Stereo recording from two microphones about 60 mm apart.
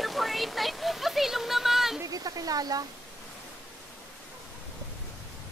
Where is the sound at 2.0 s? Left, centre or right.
Right.